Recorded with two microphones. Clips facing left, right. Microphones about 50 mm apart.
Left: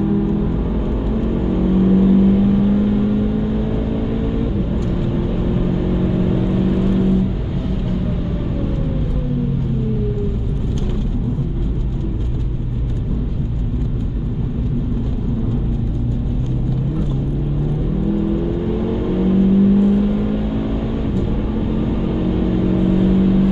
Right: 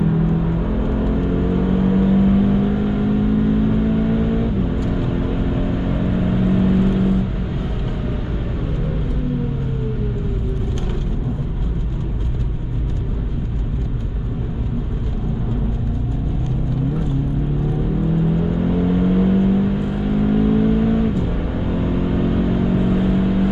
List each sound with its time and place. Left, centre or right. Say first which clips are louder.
0.0 s vehicle: left 1 dB; centre
18.6 s vehicle: right 2 dB; centre